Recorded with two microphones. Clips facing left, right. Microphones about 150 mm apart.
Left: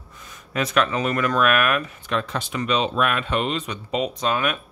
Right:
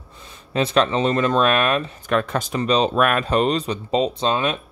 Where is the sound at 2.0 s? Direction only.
50° right (ahead or behind).